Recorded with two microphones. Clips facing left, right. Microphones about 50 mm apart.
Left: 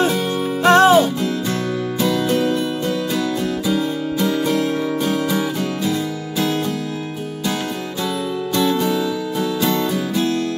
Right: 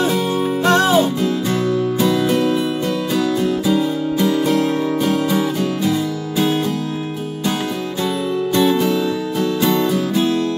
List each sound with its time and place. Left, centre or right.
0.7 s music: left
1.5 s music: right
2.1 s music: centre
3.2 s music: centre
5.1 s music: centre
6.3 s music: right
8.5 s music: centre